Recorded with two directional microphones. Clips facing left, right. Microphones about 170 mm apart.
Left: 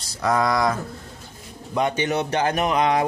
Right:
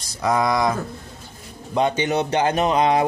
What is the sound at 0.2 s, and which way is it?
A man's voice, 15° right (ahead or behind).